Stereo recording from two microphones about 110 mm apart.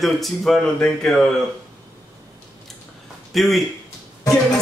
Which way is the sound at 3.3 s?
Centre (ahead or behind).